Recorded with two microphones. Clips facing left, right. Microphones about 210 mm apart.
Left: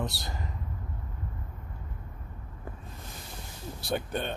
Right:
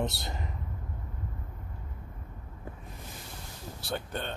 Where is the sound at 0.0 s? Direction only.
20° right (ahead or behind).